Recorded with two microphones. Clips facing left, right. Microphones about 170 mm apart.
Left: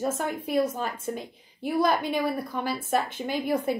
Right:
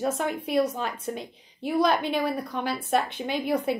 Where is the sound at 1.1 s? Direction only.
10° left (ahead or behind).